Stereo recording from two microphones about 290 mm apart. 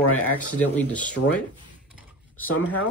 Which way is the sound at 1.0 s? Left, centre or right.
Centre.